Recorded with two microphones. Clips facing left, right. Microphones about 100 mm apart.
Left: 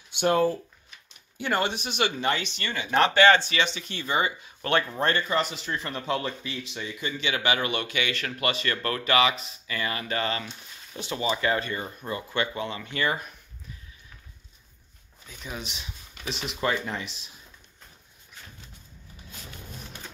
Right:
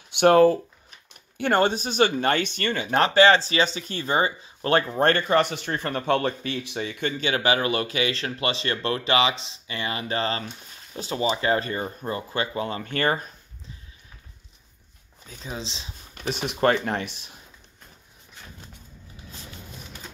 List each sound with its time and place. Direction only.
0.1 s speech: 65° right (ahead or behind)
1.4 s speech: 45° right (ahead or behind)
5.0 s speech: 55° right (ahead or behind); by 7.1 s 75° right (ahead or behind)
7.1 s speech: 40° right (ahead or behind)
15.2 s speech: 30° right (ahead or behind)
16.2 s speech: 55° right (ahead or behind)